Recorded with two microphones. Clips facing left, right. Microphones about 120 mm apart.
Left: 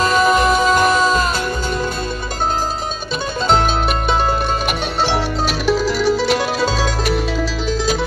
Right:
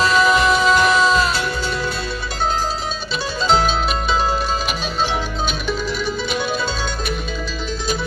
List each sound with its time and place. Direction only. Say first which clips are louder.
0.0 s music: left 1 dB; 45° left (ahead or behind)
5.0 s music: left 4 dB; 85° left